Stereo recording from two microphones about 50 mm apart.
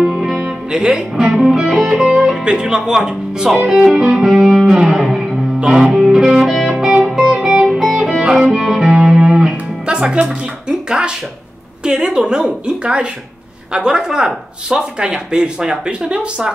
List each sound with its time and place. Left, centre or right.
0.0 s music: centre
2.4 s speech: centre
3.8 s music: centre
7.4 s music: centre
11.8 s speech: centre